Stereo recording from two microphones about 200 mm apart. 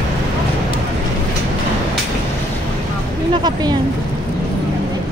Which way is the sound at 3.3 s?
20° right (ahead or behind).